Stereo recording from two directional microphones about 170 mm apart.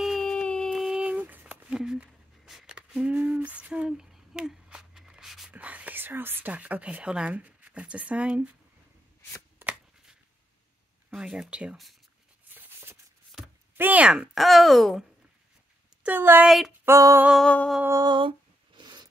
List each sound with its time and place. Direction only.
0.0 s a sound: centre (ahead or behind)
9.6 s shuffling cards: 5° right (ahead or behind)
11.1 s speech: 5° right (ahead or behind)
12.5 s a sound: 10° right (ahead or behind)
13.7 s speech: 10° right (ahead or behind)
16.0 s a woman's voice: 10° right (ahead or behind)
16.8 s female singing: 15° right (ahead or behind)
17.3 s speech: 5° left (ahead or behind)
17.8 s a sound: 20° right (ahead or behind)